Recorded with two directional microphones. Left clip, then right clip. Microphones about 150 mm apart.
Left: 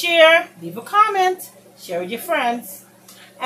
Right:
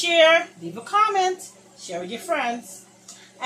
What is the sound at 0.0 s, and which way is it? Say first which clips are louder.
A woman's voice: left 4 dB; 10° left (ahead or behind).